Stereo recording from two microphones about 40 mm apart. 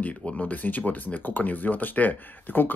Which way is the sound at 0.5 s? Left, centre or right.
Left.